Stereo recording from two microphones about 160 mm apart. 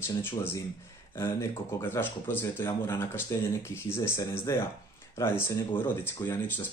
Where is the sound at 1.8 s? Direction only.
15° left (ahead or behind).